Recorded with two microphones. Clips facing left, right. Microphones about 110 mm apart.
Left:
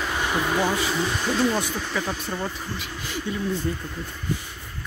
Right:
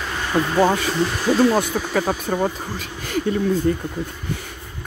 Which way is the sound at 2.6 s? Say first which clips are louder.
Right 3 dB; 45° right (ahead or behind).